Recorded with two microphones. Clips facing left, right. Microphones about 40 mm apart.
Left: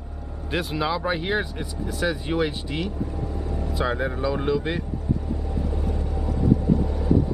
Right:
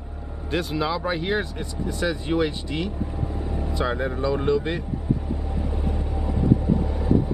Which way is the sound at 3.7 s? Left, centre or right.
Centre.